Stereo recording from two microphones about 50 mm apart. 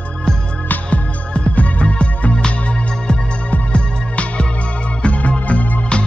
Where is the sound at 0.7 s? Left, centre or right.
Left.